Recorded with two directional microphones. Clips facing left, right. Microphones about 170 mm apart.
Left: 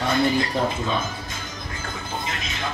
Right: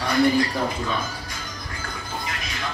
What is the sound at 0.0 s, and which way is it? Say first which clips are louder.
Speech: right 2 dB; 25° left (ahead or behind).